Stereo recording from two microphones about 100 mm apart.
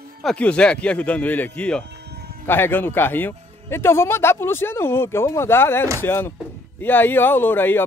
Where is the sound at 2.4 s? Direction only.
20° left (ahead or behind).